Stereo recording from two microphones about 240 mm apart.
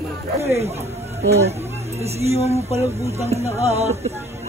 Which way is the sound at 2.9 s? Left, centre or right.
Right.